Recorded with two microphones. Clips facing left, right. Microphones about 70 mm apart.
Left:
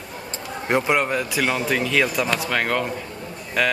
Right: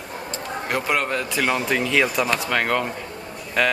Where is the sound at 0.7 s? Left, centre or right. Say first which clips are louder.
Left 3 dB; centre.